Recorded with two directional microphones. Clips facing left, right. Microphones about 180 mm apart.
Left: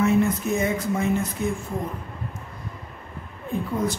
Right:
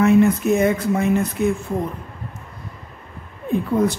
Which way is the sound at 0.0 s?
65° right (ahead or behind).